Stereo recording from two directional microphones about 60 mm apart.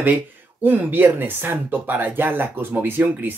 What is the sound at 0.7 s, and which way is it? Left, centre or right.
Speech, right.